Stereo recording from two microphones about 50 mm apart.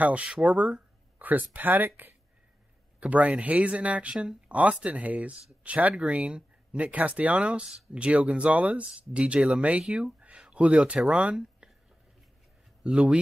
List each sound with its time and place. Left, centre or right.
0.0 s speech: right
0.3 s speech: centre
1.5 s speech: right
3.0 s speech: right
9.8 s speech: centre
10.5 s a sound: right
11.6 s whispering: centre
12.8 s speech: centre